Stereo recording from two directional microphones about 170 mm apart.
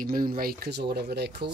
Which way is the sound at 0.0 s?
60° right (ahead or behind).